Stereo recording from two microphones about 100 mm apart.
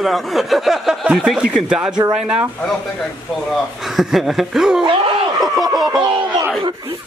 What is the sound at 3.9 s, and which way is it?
Speech, centre (ahead or behind).